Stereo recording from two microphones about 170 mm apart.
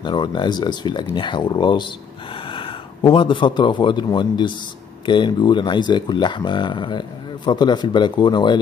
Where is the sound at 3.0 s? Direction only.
30° left (ahead or behind).